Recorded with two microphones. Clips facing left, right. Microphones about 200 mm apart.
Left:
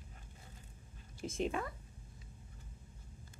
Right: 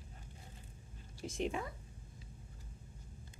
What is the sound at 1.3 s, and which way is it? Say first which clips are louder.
Speech: left 1 dB; 15° right (ahead or behind).